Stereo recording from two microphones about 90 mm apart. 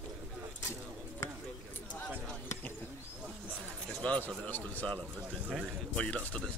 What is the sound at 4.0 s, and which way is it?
Speech, 15° left (ahead or behind).